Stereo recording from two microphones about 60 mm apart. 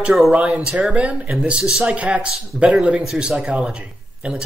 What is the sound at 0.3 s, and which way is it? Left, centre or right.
A man's voice, centre.